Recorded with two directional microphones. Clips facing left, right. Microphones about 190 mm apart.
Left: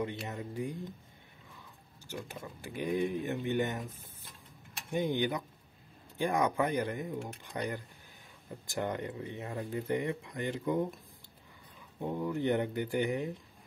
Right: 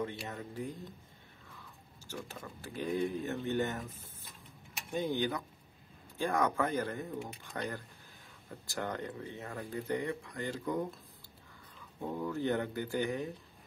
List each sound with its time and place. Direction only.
0.3 s speech: 15° left (ahead or behind)
2.0 s speech: 15° left (ahead or behind)
4.9 s speech: 15° left (ahead or behind)
12.0 s speech: 15° left (ahead or behind)